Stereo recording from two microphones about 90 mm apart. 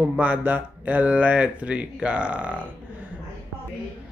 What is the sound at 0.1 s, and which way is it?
A man's voice, 15° right (ahead or behind).